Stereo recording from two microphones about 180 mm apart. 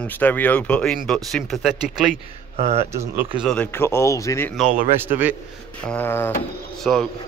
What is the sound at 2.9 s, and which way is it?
Speech, 15° right (ahead or behind).